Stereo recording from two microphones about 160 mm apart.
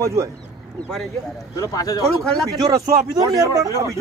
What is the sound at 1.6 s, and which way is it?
Speech, 20° left (ahead or behind).